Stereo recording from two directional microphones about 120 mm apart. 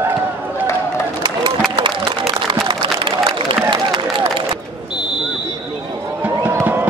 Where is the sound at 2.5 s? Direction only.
45° right (ahead or behind).